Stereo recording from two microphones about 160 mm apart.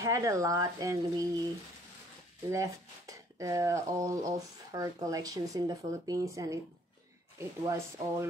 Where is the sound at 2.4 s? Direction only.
20° right (ahead or behind).